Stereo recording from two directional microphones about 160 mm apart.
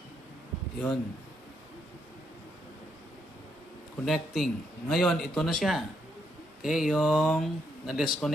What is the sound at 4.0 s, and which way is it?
A man's voice, centre (ahead or behind).